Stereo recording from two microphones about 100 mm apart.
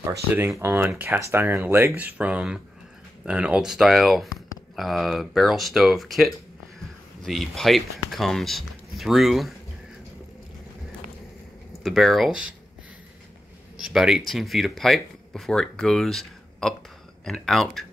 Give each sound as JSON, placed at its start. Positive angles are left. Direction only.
{"t": 0.6, "sound": "speech", "side_deg": -20}
{"t": 11.8, "sound": "speech", "side_deg": 0}
{"t": 13.7, "sound": "speech", "side_deg": -5}